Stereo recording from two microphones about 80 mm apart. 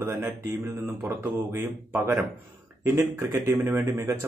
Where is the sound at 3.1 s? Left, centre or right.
Right.